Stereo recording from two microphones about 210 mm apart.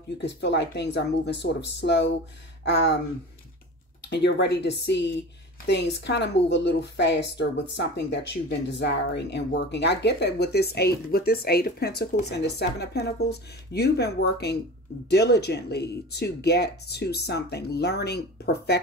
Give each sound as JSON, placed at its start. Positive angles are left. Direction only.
{"t": 0.2, "sound": "speech", "side_deg": 55}
{"t": 4.0, "sound": "a woman's voice", "side_deg": 55}